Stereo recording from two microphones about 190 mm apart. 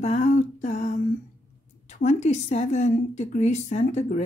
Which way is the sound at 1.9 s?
35° left (ahead or behind).